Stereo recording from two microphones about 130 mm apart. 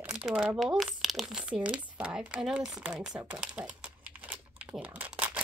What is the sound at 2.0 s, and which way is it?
Typing, 10° right (ahead or behind).